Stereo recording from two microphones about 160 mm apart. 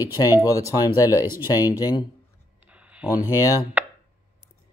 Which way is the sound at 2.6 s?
10° right (ahead or behind).